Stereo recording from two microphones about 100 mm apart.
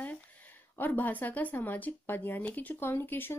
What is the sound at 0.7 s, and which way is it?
Speech, 20° left (ahead or behind).